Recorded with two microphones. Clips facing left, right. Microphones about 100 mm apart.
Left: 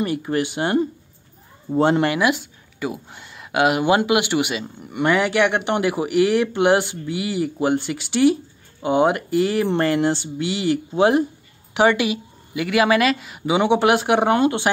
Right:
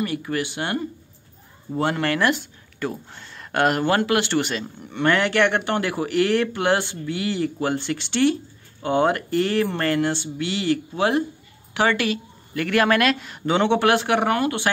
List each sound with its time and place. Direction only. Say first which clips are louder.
0.0 s speech: left 3 dB; 25° left (ahead or behind)